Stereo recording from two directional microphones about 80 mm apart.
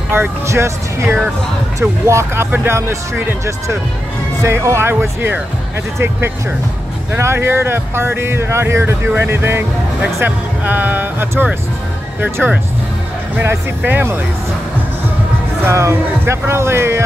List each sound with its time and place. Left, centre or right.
0.1 s speech: right
4.4 s speech: right
7.2 s speech: right
15.6 s speech: right